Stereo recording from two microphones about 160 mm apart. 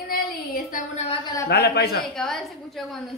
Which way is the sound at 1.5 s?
85° left.